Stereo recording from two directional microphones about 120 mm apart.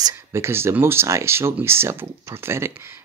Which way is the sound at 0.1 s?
20° right (ahead or behind).